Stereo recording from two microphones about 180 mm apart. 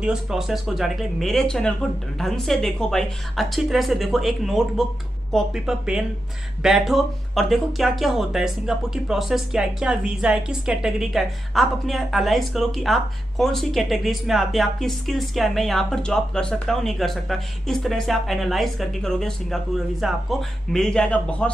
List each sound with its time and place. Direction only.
0.0 s speech: centre (ahead or behind)